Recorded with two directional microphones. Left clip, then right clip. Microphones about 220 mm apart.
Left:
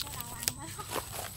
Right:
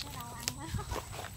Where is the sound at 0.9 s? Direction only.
35° left (ahead or behind).